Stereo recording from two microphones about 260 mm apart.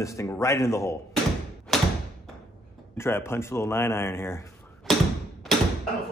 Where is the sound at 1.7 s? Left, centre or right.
Centre.